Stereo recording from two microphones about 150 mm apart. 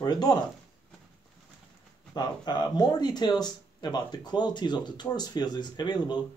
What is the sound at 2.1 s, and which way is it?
Speech, 30° left (ahead or behind).